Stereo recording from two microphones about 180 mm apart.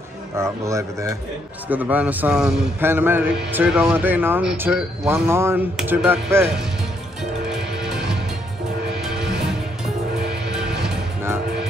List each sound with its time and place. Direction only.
0.4 s a man's voice: 15° right (ahead or behind)
7.9 s music: 5° right (ahead or behind)
10.5 s music: 5° right (ahead or behind)